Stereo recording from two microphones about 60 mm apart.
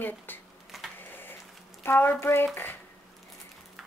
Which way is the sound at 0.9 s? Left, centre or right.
Left.